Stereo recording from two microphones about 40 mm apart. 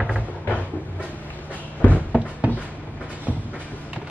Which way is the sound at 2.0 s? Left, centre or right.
Right.